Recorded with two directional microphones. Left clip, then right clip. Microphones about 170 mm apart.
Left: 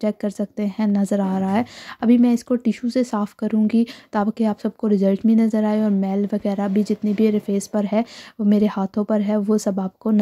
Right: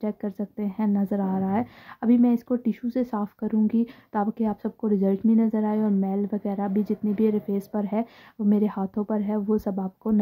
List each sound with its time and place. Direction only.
0.0 s speech: 25° left (ahead or behind)